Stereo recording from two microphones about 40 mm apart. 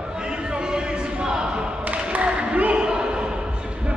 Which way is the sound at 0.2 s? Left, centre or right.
Right.